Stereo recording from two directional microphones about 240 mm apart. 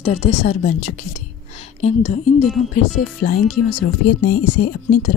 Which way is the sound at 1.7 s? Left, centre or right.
Left.